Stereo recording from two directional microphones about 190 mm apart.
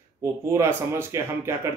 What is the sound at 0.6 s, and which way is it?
Speech, 15° right (ahead or behind).